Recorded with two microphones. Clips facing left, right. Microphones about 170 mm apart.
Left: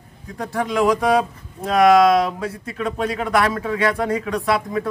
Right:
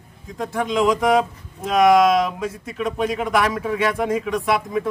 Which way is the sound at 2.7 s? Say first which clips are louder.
Right 1 dB; 15° right (ahead or behind).